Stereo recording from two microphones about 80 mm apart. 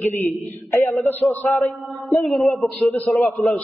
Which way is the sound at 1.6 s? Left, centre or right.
Centre.